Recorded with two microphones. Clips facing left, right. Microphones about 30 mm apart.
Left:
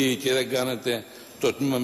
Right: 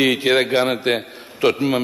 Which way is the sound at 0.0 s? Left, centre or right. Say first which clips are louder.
Right 7 dB; right.